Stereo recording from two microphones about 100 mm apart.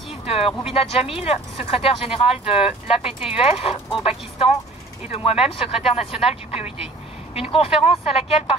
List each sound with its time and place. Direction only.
0.3 s speech: 75° left (ahead or behind)
3.1 s speech: 5° right (ahead or behind)
3.3 s speech: 80° left
5.1 s speech: 85° left
7.3 s speech: 75° left (ahead or behind)